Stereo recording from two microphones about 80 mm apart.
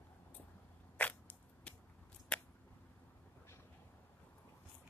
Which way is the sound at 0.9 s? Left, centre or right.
Centre.